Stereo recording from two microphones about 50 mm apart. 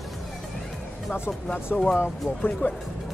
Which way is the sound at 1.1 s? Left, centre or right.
Left.